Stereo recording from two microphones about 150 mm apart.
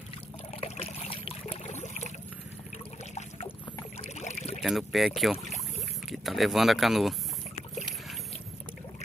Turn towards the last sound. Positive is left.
turn(degrees=0)  # may be behind; listen again after turning